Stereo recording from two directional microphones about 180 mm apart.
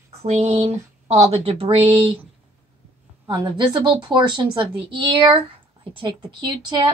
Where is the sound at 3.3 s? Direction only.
25° right (ahead or behind).